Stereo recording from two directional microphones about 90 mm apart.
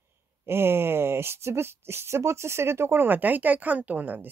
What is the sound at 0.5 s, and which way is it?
Speech, 25° right (ahead or behind).